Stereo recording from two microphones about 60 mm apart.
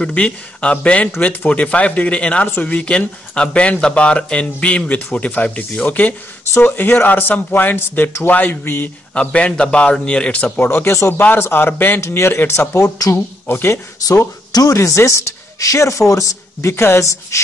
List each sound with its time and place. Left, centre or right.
0.0 s speech: centre
9.1 s speech: centre; by 11.1 s left
11.1 s speech: left
12.7 s a woman's voice: left
13.5 s speech: left
14.0 s speech: left
14.8 s speech: left